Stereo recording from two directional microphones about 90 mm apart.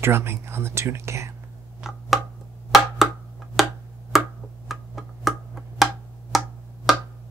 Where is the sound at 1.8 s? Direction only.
5° right (ahead or behind).